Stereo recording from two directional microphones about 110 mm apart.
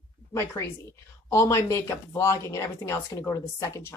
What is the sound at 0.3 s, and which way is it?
Speech, 25° left (ahead or behind).